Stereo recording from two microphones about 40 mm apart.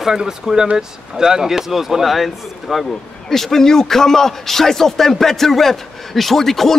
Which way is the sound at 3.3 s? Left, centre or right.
Centre.